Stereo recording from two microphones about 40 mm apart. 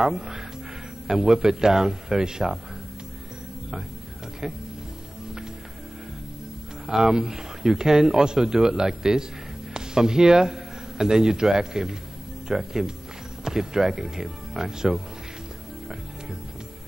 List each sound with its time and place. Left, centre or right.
0.0 s a man's voice: centre
6.9 s a man's voice: centre